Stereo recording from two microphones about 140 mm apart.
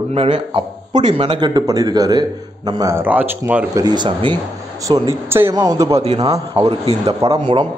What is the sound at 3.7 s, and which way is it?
Speech, 30° right (ahead or behind).